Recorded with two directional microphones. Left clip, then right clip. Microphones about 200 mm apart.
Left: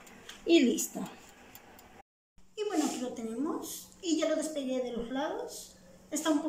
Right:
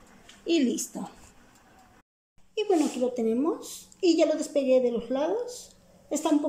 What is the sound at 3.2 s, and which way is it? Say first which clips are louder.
A woman's voice: right 9 dB; 45° right (ahead or behind).